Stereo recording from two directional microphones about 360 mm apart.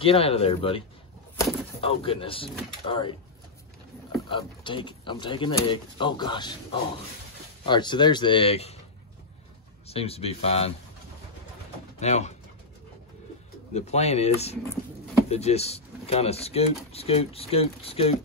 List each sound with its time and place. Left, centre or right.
0.0 s speech: centre
4.3 s speech: centre
9.8 s speech: centre
12.0 s speech: centre
13.7 s speech: centre